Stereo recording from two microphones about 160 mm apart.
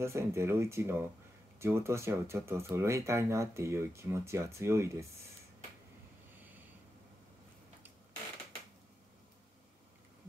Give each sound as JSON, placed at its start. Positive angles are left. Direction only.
{"t": 0.0, "sound": "speech", "side_deg": -15}